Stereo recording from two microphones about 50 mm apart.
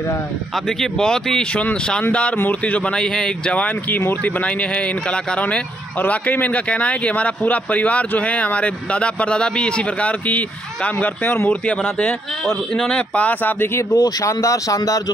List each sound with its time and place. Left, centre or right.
0.9 s speech: centre
3.0 s speech: centre
3.5 s speech: left
6.0 s speech: left
11.4 s speech: left
12.7 s speech: centre
13.1 s speech: left
13.7 s speech: left